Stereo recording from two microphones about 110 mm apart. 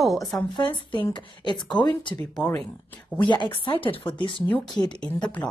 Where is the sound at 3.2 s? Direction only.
45° left (ahead or behind).